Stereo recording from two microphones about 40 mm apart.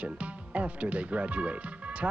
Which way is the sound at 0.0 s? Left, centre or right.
Right.